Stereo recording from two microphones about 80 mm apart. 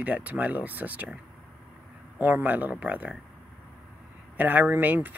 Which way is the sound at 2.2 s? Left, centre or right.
Right.